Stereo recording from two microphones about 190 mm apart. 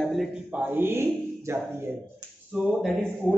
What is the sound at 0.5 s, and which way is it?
Speech, 10° right (ahead or behind).